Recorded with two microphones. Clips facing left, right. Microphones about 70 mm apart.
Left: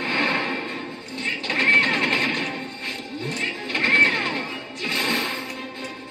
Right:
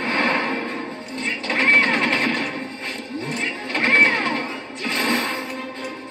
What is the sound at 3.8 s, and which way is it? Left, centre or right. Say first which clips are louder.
Music: right 3 dB; right.